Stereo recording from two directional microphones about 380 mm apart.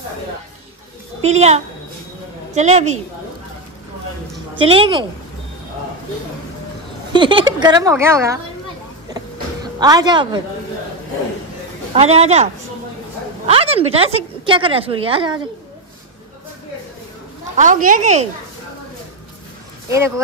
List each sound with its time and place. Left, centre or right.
1.2 s a woman's voice: centre
4.6 s a woman's voice: centre
7.1 s a woman's voice: centre
9.1 s vehicle: centre
11.9 s a woman's voice: centre
13.5 s a woman's voice: centre
17.6 s speech: centre